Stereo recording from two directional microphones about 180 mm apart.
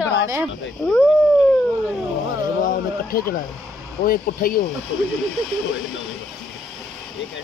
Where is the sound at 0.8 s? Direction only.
5° left (ahead or behind).